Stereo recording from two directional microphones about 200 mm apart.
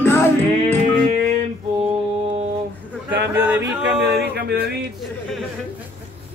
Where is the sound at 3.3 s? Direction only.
10° right (ahead or behind).